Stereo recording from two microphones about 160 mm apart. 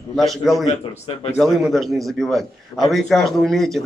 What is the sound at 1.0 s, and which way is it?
Speech, 40° left (ahead or behind).